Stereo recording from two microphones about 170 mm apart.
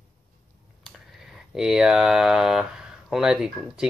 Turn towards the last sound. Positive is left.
turn(degrees=-5)  # may be behind; listen again after turning